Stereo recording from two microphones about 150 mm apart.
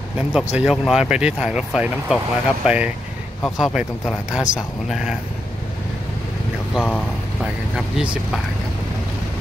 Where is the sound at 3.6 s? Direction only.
5° right (ahead or behind).